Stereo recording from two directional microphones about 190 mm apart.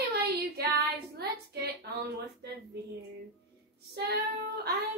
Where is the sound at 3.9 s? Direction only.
55° right (ahead or behind).